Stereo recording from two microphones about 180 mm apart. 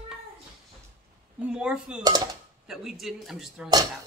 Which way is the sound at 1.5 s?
5° right (ahead or behind).